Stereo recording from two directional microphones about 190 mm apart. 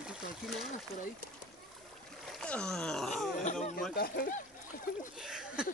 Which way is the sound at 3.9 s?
50° left (ahead or behind).